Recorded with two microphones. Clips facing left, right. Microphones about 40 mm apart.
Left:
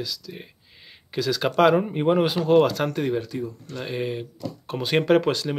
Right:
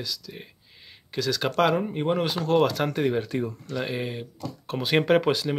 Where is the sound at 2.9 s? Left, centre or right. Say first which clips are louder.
Even; centre.